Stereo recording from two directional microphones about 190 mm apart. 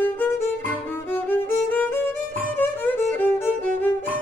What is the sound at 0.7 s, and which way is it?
Music, 10° left (ahead or behind).